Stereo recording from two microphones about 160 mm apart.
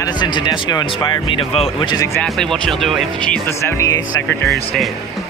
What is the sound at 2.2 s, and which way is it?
Speech, centre (ahead or behind).